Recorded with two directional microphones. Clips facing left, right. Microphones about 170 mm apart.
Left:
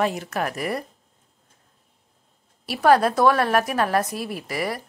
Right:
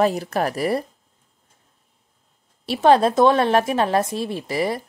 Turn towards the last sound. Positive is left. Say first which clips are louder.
# right 4 dB
turn(degrees=-25)  # may be behind; listen again after turning